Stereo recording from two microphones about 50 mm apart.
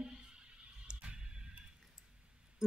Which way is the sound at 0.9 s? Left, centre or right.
Right.